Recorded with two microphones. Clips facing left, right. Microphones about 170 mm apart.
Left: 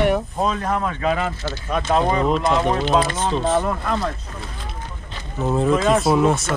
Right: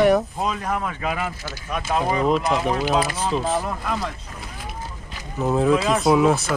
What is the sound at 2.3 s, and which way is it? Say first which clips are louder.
Speech: left 2 dB; 5° right (ahead or behind).